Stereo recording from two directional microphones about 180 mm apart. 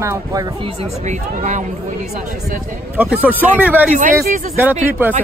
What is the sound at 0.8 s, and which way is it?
Speech, 40° right (ahead or behind).